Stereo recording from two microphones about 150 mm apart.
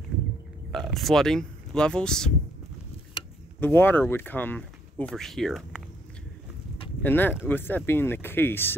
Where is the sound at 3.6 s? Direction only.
15° left (ahead or behind).